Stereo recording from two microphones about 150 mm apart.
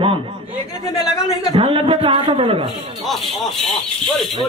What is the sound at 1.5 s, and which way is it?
A man's voice, 35° right (ahead or behind).